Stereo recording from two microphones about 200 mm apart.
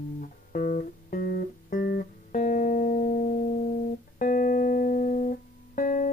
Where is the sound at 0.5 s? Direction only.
40° left (ahead or behind).